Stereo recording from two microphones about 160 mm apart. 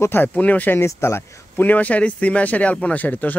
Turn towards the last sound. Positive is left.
turn(degrees=10)  # may be behind; listen again after turning